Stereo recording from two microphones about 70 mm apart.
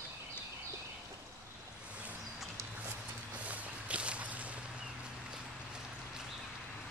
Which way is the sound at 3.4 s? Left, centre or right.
Centre.